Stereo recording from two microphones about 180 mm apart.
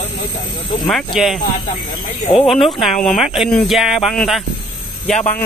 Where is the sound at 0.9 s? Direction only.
Centre (ahead or behind).